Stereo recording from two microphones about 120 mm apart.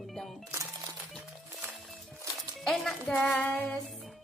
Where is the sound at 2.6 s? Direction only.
5° left (ahead or behind).